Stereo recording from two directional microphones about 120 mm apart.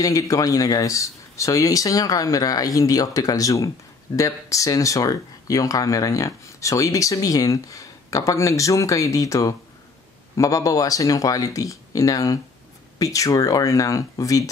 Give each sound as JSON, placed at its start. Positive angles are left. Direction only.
{"t": 0.0, "sound": "speech", "side_deg": 30}